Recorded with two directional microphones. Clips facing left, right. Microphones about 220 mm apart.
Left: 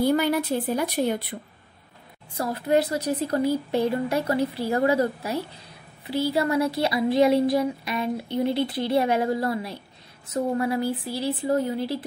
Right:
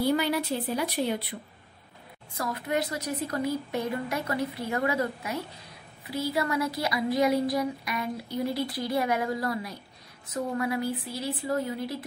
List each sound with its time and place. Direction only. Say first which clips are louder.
0.0 s speech: left 4 dB; 50° left (ahead or behind)
2.3 s a woman's voice: left 7 dB; 30° left (ahead or behind)